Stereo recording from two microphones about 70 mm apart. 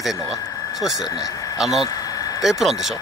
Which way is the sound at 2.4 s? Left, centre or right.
Centre.